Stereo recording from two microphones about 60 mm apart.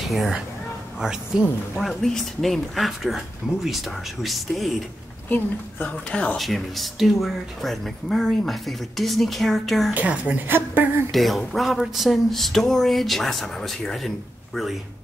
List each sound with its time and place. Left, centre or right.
0.9 s speech: centre
1.8 s speech: centre
5.3 s a woman's voice: left
6.0 s speech: centre
6.3 s speech: centre
9.9 s a woman's voice: right
11.1 s speech: centre